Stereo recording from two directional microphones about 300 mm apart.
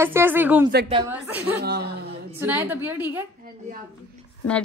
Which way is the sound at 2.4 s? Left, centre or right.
Centre.